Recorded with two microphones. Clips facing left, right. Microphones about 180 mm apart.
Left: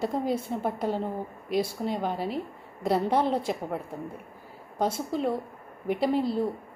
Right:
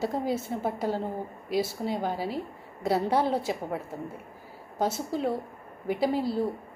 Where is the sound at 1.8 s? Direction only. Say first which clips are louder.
Even; 5° right (ahead or behind).